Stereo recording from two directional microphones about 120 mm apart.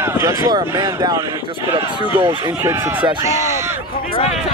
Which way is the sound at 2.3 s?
25° right (ahead or behind).